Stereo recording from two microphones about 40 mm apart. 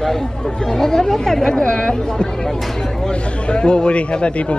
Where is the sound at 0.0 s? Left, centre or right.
Centre.